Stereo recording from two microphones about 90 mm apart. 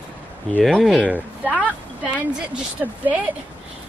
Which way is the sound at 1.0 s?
15° right (ahead or behind).